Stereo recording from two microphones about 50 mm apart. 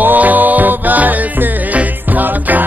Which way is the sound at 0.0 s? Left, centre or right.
Right.